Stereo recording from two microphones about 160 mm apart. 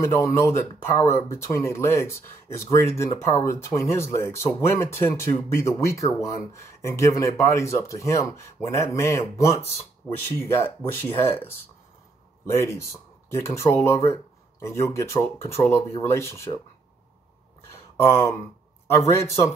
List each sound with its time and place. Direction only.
0.0 s speech: 15° left (ahead or behind)
12.6 s speech: 20° left (ahead or behind)
17.9 s speech: 15° left (ahead or behind)